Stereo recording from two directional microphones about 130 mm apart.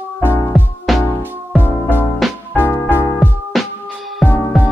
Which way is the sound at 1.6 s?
15° left (ahead or behind).